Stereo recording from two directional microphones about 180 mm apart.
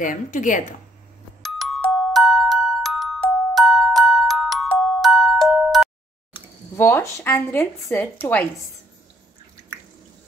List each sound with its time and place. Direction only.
0.0 s a woman's voice: 45° left (ahead or behind)
1.4 s music: centre (ahead or behind)
3.5 s glockenspiel: centre (ahead or behind)
6.8 s speech: 15° left (ahead or behind)